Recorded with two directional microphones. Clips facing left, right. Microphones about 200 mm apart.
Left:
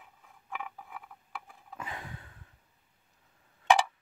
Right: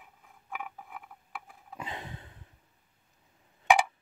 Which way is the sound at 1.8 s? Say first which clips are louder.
Right 2 dB; 25° right (ahead or behind).